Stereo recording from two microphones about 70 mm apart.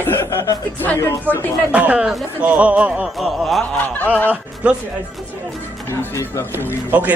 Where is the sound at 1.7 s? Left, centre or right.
Centre.